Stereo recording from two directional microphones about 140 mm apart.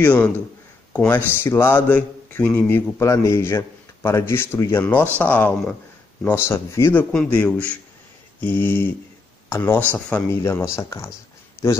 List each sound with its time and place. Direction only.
0.0 s speech: 10° left (ahead or behind)